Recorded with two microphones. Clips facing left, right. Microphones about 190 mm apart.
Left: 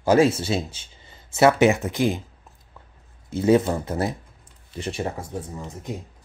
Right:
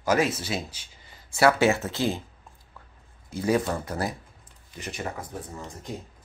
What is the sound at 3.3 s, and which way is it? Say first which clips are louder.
Speech: left 6 dB; 25° left (ahead or behind).